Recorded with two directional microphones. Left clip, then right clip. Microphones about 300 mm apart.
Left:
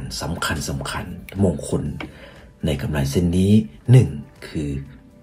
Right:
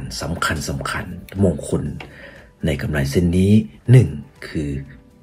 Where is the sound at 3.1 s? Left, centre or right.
Centre.